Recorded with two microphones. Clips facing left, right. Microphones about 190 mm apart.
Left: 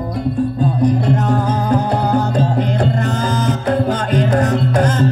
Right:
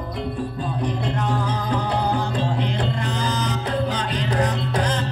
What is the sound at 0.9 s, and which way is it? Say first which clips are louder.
Music: left 7 dB; 45° left (ahead or behind).